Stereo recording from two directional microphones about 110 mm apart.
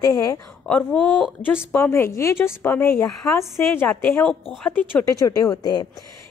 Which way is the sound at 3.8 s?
15° left (ahead or behind).